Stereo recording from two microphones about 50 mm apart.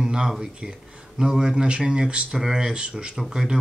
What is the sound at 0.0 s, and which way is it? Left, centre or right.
Speech, centre.